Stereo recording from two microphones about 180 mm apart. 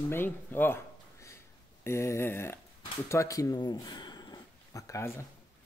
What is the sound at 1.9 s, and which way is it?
Speech, 15° left (ahead or behind).